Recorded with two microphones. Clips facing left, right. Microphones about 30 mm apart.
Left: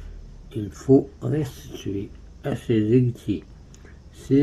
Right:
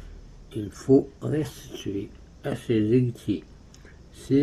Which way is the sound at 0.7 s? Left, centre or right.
Centre.